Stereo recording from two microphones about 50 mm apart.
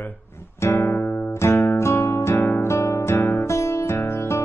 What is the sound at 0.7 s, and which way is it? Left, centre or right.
Music, left.